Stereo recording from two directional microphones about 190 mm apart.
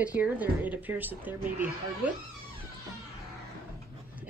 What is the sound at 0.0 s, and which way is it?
Speech, 5° right (ahead or behind).